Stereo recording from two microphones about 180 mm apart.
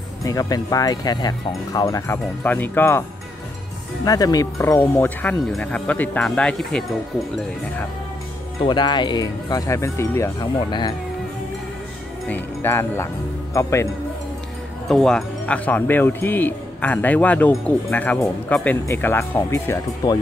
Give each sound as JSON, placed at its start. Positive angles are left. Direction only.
{"t": 0.2, "sound": "speech", "side_deg": 20}
{"t": 4.0, "sound": "speech", "side_deg": 20}
{"t": 4.7, "sound": "speech", "side_deg": 10}
{"t": 8.6, "sound": "speech", "side_deg": 25}
{"t": 12.3, "sound": "speech", "side_deg": 10}
{"t": 14.9, "sound": "speech", "side_deg": 0}